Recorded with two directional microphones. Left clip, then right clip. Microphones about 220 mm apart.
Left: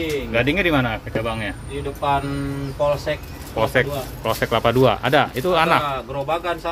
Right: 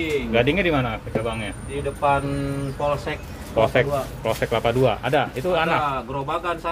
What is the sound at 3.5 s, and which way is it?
Speech, centre (ahead or behind).